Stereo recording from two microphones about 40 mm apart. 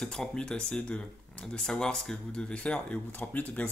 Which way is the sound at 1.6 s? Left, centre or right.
Centre.